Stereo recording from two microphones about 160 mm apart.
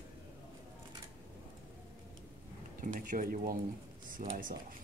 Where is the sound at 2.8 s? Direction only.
55° right (ahead or behind).